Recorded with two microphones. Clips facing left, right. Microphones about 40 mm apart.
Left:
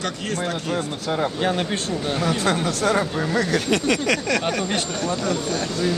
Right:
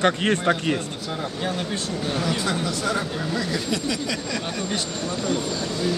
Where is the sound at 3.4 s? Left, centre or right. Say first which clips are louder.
Left 6 dB; left.